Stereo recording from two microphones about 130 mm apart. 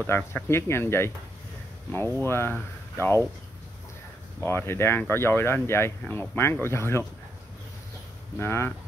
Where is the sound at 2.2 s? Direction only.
20° left (ahead or behind).